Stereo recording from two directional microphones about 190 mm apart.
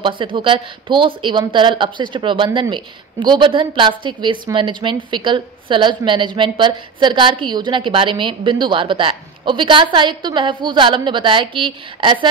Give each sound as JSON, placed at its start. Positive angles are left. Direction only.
{"t": 0.0, "sound": "a woman's voice", "side_deg": -25}